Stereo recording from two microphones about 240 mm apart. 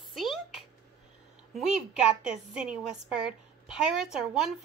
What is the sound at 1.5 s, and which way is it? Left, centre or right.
A child's voice, centre.